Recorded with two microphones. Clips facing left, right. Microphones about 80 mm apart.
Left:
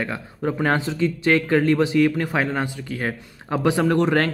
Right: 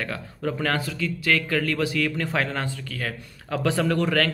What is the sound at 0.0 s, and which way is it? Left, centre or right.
Speech, left.